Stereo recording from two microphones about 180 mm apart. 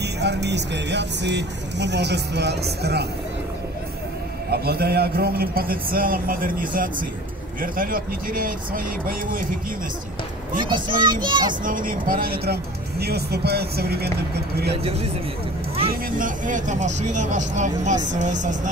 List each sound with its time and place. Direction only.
0.0 s speech: 70° right (ahead or behind)
4.5 s a man's voice: 60° right (ahead or behind)
10.7 s a child's voice: 25° right (ahead or behind)
11.6 s a man's voice: 50° right (ahead or behind)
14.8 s speech: 35° right (ahead or behind)
15.9 s speech: 50° right (ahead or behind)